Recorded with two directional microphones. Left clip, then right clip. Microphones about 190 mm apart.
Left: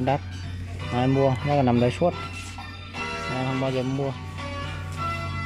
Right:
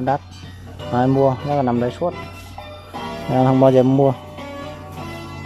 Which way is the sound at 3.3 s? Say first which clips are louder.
Right 16 dB; 35° right (ahead or behind).